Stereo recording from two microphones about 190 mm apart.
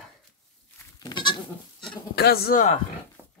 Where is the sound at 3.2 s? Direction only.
10° right (ahead or behind).